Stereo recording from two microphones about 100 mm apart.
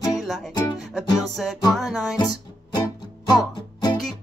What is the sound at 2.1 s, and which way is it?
Music, 45° left (ahead or behind).